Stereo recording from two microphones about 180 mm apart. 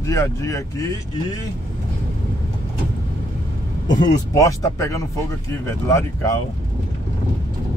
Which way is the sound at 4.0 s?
20° left (ahead or behind).